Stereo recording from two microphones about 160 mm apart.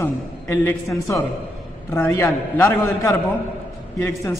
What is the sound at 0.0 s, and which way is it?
A man's voice, 15° left (ahead or behind).